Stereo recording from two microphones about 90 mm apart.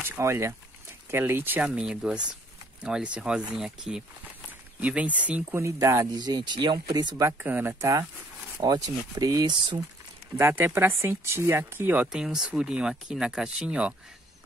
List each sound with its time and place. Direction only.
0.2 s speech: 30° right (ahead or behind)
1.7 s speech: 10° right (ahead or behind)
4.7 s speech: 15° right (ahead or behind)
5.6 s speech: 35° right (ahead or behind)
6.1 s speech: 50° right (ahead or behind)
7.2 s speech: 25° right (ahead or behind)
8.6 s speech: 50° right (ahead or behind)
10.3 s speech: 25° right (ahead or behind)
12.1 s speech: 5° right (ahead or behind)